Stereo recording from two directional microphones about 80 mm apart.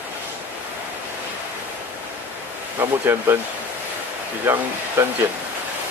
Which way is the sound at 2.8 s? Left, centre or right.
Right.